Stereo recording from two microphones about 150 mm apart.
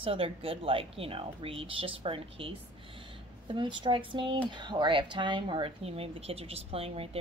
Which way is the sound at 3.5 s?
35° right (ahead or behind).